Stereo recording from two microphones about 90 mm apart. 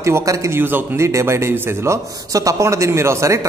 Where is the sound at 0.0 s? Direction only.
35° right (ahead or behind).